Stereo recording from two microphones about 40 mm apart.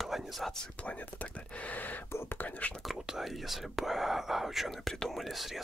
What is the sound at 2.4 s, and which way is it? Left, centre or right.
Speech, left.